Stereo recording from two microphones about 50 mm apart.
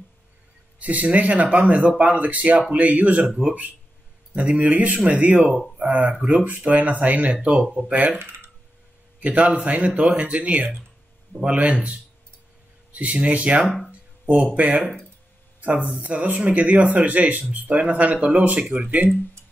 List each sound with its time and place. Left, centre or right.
0.7 s speech: right
4.4 s speech: right
9.2 s speech: right